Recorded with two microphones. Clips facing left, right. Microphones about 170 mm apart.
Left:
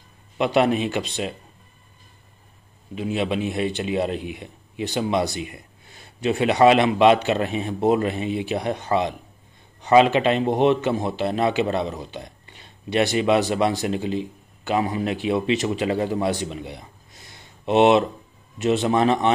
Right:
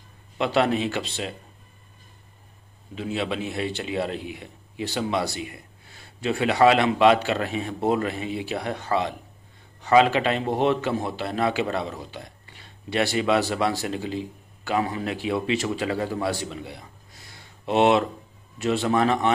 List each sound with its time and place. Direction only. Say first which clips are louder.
0.4 s a man's voice: left 3 dB; 15° left (ahead or behind)
2.9 s speech: left 4 dB; 15° left (ahead or behind)